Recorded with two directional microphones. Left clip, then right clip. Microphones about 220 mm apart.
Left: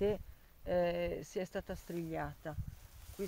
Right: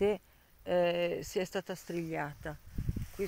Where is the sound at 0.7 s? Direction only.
45° right (ahead or behind).